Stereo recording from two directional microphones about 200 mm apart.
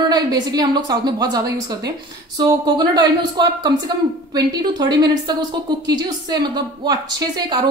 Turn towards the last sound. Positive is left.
turn(degrees=-20)  # may be behind; listen again after turning